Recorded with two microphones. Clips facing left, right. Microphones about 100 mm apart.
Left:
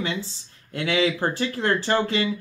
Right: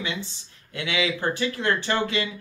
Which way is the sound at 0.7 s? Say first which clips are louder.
Left 4 dB; 35° left (ahead or behind).